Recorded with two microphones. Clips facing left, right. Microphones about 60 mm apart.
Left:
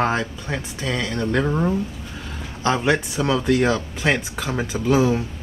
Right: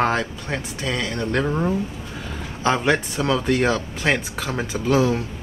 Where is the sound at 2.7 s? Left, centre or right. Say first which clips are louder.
Even; centre.